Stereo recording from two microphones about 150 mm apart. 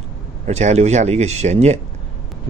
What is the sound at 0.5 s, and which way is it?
Speech, 50° right (ahead or behind).